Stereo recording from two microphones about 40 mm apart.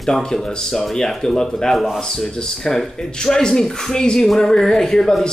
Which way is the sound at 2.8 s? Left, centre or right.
Centre.